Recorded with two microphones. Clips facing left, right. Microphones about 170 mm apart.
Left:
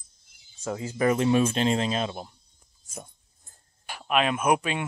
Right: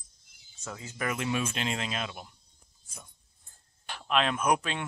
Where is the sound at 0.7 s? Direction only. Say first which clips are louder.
Left 10 dB; 30° left (ahead or behind).